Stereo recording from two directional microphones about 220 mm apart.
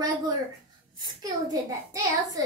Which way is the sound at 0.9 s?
15° right (ahead or behind).